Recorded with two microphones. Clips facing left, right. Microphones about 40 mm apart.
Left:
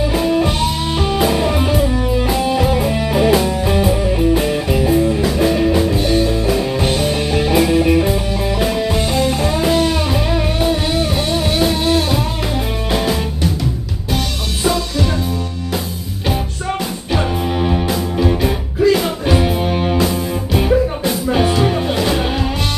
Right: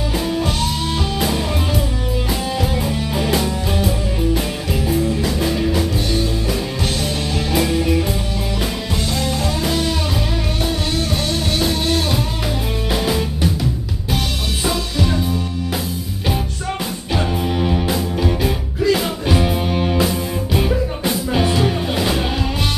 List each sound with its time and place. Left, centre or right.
0.1 s music: centre
17.1 s music: centre